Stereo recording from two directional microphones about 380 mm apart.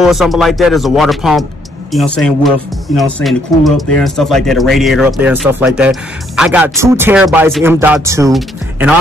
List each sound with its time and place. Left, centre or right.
0.0 s speech: centre